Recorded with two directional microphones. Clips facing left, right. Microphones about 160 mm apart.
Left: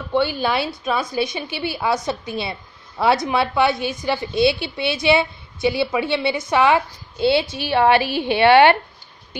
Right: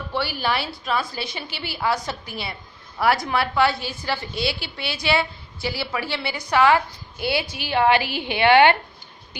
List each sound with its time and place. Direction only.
0.1 s a woman's voice: 20° left (ahead or behind)